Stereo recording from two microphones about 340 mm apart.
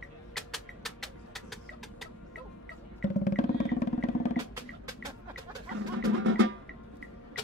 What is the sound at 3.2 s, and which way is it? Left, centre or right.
Vehicle, left.